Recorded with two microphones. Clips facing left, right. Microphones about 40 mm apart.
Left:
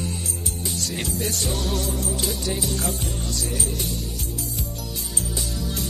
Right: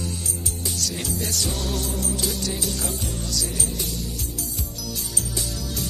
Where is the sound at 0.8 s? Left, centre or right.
Left.